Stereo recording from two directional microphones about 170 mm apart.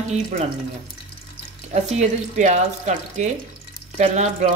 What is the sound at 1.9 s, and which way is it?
Speech, 45° right (ahead or behind).